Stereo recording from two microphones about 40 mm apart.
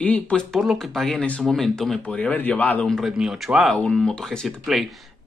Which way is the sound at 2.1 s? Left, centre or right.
Left.